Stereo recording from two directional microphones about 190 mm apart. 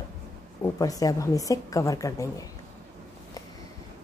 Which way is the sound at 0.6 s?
20° left (ahead or behind).